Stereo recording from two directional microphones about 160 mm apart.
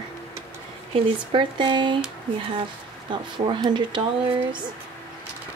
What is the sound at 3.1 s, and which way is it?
Speech, 30° right (ahead or behind).